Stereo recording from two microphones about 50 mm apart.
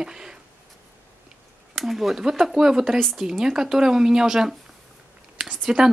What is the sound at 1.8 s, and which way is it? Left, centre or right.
Speech, centre.